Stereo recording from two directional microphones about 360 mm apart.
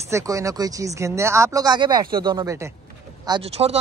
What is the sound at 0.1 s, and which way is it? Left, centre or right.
Speech, centre.